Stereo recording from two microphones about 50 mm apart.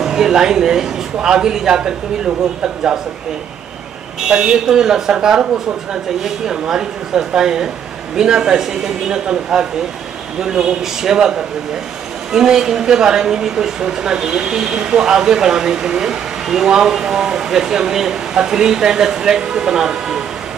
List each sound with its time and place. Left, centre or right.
0.0 s a woman's voice: centre
4.3 s a woman's voice: centre